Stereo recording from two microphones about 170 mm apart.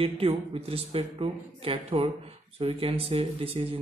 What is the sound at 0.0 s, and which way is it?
Speech, 35° right (ahead or behind).